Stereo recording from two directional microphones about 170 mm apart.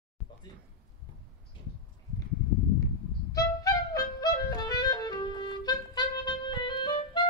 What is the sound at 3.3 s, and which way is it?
Clarinet, 20° left (ahead or behind).